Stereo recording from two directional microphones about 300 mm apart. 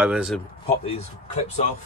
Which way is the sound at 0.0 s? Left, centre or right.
Centre.